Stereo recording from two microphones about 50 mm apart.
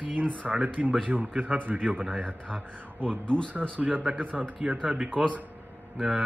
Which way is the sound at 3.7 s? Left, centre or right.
Right.